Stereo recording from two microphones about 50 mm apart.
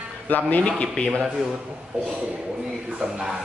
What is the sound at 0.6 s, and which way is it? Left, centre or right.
Speech, centre.